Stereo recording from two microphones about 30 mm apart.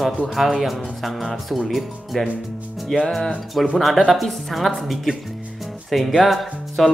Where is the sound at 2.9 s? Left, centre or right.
Left.